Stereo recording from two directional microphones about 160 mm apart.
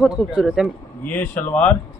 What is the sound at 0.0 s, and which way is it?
Speech, 5° right (ahead or behind).